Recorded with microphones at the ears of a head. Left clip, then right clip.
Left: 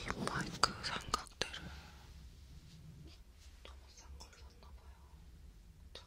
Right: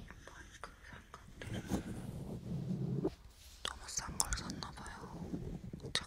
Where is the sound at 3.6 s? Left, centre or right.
Right.